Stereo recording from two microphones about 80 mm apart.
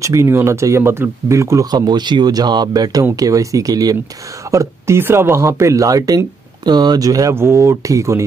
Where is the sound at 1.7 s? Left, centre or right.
Right.